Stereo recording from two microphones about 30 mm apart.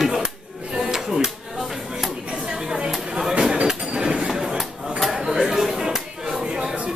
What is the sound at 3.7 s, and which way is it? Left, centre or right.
Train, right.